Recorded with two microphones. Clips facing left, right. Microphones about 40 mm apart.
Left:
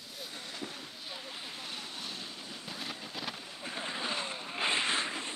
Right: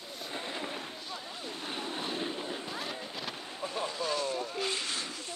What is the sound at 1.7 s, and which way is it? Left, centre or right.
Vehicle, right.